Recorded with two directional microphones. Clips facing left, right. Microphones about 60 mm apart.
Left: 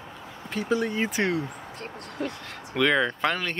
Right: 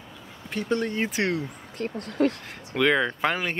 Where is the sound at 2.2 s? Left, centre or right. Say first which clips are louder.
Right 9 dB; right.